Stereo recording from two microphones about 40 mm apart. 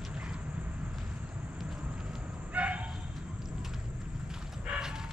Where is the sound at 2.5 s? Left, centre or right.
Right.